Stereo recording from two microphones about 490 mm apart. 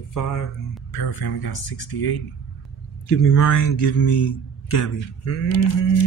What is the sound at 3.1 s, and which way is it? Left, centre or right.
Speech, left.